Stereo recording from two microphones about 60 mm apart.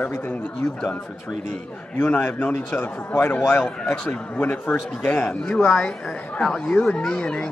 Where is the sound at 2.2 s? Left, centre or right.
Left.